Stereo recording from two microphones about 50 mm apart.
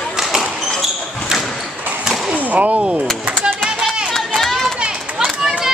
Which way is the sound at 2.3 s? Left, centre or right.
Right.